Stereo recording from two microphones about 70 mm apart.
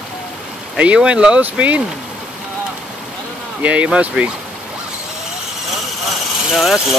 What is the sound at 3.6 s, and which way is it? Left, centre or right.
Speech, centre.